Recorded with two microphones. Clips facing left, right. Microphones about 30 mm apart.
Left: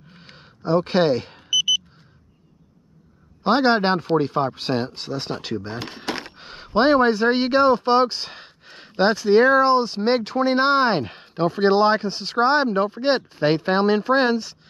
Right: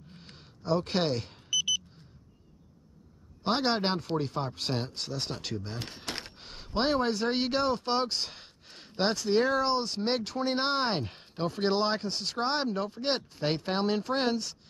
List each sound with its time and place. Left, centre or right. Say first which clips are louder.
0.1 s a sound: left 7 dB; left
0.7 s speech: left 10 dB; left
3.4 s speech: left 10 dB; left